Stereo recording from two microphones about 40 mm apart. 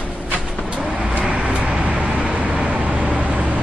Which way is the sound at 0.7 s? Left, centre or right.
Centre.